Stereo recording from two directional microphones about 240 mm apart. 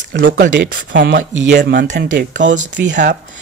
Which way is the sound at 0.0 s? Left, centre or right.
Right.